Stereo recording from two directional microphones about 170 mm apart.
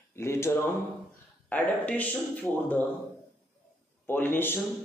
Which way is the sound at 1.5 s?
10° left (ahead or behind).